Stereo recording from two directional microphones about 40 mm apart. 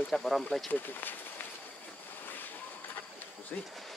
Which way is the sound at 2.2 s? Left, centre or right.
Left.